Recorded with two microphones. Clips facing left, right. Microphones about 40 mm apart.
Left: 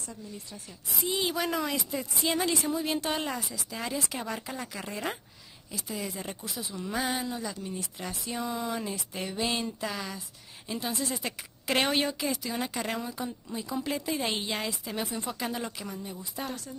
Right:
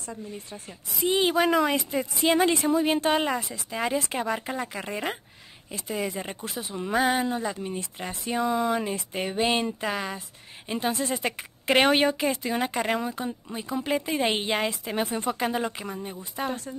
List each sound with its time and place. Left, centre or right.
0.1 s speech: right
2.7 s speech: right
3.3 s speech: right
3.7 s speech: right
5.7 s speech: right
6.9 s speech: centre
7.2 s speech: right
8.4 s speech: centre
8.9 s speech: right
11.2 s speech: right
12.8 s speech: right
15.4 s speech: right